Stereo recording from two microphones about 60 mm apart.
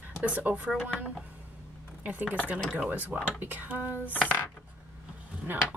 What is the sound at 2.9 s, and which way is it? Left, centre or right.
Speech, right.